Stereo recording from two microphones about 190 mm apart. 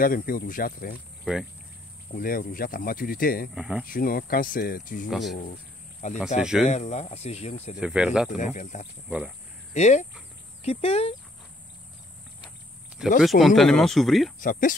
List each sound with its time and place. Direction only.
0.0 s speech: 50° left (ahead or behind)
1.2 s speech: centre (ahead or behind)
2.1 s speech: 50° left (ahead or behind)
3.5 s speech: 5° right (ahead or behind)
3.8 s speech: 50° left (ahead or behind)
5.1 s speech: centre (ahead or behind)
5.4 s a sound: 40° left (ahead or behind)
6.4 s speech: 5° right (ahead or behind)
6.7 s speech: 35° left (ahead or behind)
7.8 s speech: 5° right (ahead or behind)
8.4 s speech: 40° left (ahead or behind)
13.2 s speech: centre (ahead or behind)
14.4 s speech: 45° left (ahead or behind)